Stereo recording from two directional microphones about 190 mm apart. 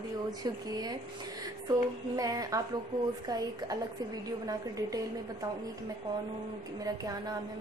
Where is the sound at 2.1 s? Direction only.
20° right (ahead or behind).